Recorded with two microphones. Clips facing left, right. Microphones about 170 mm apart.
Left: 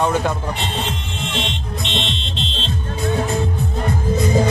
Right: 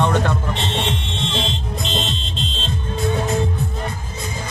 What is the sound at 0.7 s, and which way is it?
Music, 30° right (ahead or behind).